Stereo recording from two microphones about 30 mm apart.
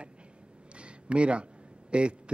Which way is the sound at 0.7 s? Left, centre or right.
Right.